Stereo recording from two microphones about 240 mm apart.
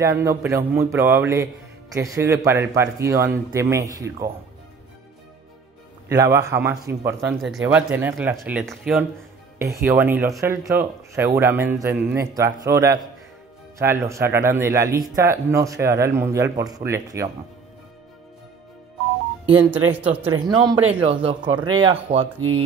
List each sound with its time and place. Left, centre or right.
0.0 s speech: centre
6.1 s speech: centre
19.9 s speech: centre
20.2 s speech: centre